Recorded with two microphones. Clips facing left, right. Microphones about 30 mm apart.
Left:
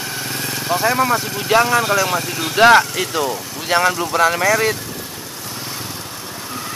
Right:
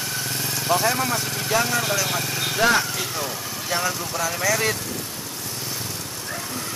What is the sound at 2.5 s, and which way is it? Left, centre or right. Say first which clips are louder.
Speech: left 10 dB; left.